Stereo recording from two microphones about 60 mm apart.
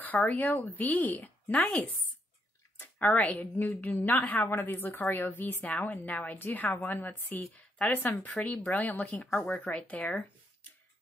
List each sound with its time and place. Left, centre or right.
0.3 s a woman's voice: left